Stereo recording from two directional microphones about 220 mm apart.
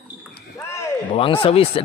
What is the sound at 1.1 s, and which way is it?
Speech, 25° left (ahead or behind).